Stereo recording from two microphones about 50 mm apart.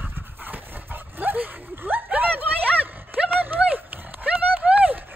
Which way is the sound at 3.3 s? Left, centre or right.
Right.